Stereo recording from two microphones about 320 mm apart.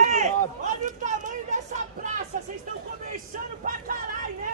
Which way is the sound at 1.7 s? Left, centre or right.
Right.